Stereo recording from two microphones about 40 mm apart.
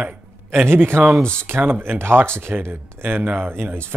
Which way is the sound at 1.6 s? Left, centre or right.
Right.